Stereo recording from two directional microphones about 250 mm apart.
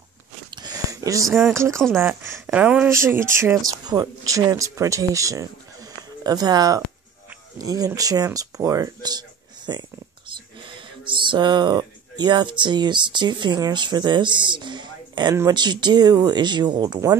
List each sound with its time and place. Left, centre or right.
0.5 s wheeze: centre
1.2 s speech: centre
1.5 s speech: centre